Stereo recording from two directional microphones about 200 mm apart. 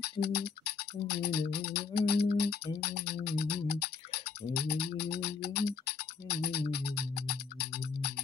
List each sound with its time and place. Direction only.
0.0 s music: 55° left (ahead or behind)